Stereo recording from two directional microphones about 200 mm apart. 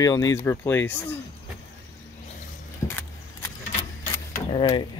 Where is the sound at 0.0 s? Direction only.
15° left (ahead or behind).